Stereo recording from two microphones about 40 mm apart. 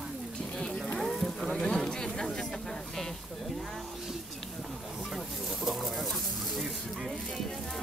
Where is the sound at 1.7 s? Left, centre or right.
Centre.